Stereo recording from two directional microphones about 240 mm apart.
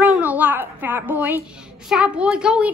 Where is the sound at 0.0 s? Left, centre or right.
Centre.